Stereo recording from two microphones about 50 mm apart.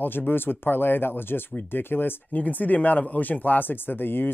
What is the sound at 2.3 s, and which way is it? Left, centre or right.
Speech, left.